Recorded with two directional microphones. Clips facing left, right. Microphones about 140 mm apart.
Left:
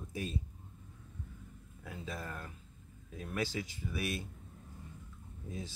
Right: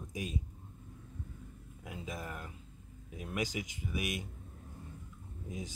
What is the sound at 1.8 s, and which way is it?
Speech, 15° right (ahead or behind).